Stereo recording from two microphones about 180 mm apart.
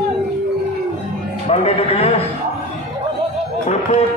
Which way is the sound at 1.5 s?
35° left (ahead or behind).